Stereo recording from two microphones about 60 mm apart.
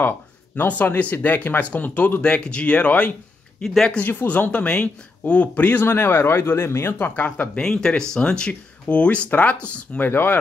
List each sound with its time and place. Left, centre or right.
0.6 s speech: left
2.2 s speech: centre
3.6 s speech: centre
4.0 s speech: left
7.2 s speech: left
7.6 s speech: centre; by 10.3 s left